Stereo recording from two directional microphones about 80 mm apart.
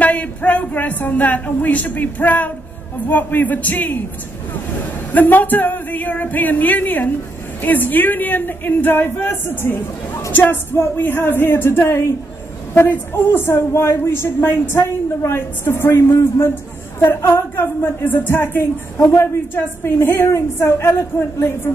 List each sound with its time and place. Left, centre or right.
0.0 s a woman's voice: centre
5.1 s a woman's voice: left